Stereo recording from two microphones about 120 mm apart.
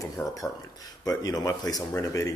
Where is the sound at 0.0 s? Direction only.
25° left (ahead or behind).